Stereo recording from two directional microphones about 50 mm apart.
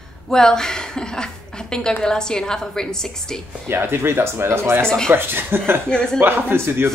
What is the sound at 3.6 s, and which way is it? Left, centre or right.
Speech, right.